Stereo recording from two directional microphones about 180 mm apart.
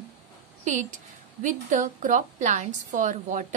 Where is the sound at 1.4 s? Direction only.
45° right (ahead or behind).